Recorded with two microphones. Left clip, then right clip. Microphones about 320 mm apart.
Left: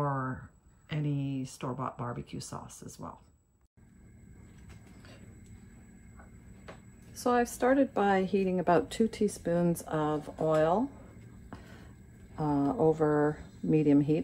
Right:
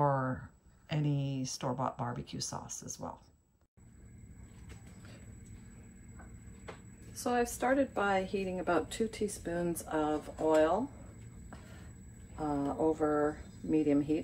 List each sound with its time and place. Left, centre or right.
0.0 s a sound: centre
0.8 s speech: centre
7.2 s a woman's voice: left
12.4 s a woman's voice: left